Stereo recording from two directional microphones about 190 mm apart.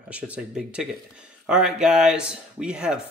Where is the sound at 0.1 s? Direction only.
5° right (ahead or behind).